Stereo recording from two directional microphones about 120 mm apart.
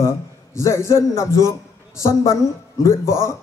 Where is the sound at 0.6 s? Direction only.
20° left (ahead or behind).